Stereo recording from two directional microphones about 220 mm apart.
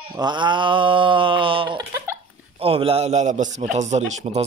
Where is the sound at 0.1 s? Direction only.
20° right (ahead or behind).